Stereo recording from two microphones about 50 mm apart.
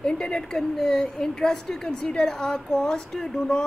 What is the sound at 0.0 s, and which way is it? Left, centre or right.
A woman's voice, centre.